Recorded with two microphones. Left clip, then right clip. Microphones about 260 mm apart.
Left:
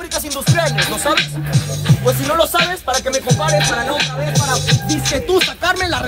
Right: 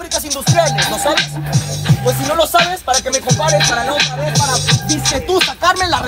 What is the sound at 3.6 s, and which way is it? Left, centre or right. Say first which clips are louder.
Music: right 2 dB; right.